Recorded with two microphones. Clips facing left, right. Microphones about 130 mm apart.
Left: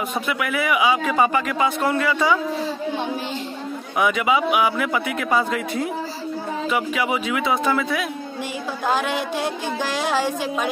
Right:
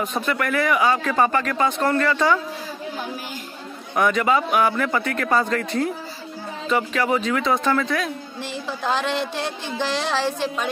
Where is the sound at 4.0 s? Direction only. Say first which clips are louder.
Even; 5° left (ahead or behind).